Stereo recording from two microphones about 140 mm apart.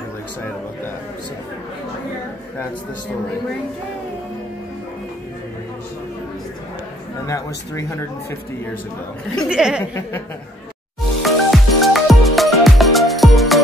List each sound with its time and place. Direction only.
7.2 s speech: 20° left (ahead or behind)
9.5 s speech: 5° right (ahead or behind)
11.2 s music: centre (ahead or behind)